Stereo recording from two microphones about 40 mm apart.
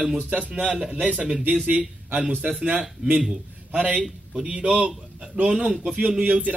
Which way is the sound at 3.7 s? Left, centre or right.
Right.